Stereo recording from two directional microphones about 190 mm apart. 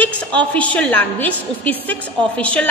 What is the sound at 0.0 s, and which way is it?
A woman's voice, 5° left (ahead or behind).